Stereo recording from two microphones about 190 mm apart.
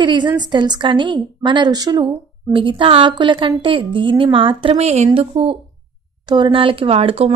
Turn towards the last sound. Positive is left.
turn(degrees=-30)  # may be behind; listen again after turning